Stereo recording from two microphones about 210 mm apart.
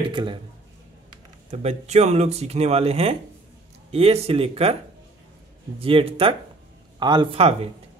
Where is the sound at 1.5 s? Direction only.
30° right (ahead or behind).